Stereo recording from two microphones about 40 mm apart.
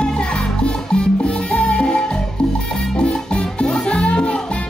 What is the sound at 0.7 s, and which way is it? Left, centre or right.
Salsa music, left.